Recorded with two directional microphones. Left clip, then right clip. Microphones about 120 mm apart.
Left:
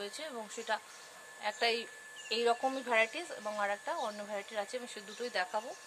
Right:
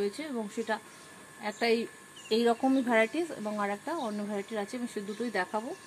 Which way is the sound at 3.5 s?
15° right (ahead or behind).